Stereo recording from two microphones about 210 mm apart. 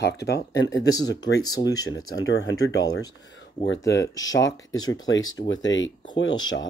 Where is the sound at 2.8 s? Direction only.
15° left (ahead or behind).